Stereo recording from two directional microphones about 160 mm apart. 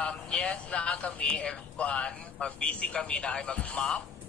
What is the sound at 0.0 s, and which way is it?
A man's voice, 5° left (ahead or behind).